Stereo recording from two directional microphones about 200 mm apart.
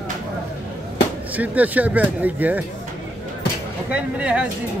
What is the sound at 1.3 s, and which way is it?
A man's voice, 10° right (ahead or behind).